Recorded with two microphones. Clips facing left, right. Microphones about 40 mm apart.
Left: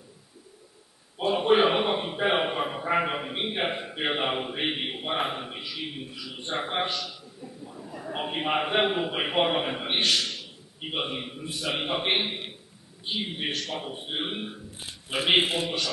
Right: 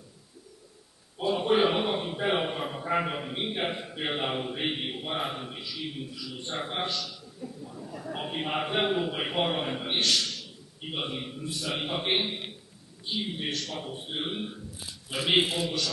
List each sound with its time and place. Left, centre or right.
1.1 s a man's voice: left
14.8 s a man's voice: left